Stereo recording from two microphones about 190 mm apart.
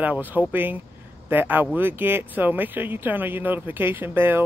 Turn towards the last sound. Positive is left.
turn(degrees=-10)  # may be behind; listen again after turning